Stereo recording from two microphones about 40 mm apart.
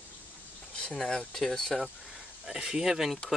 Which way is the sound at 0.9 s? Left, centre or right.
Centre.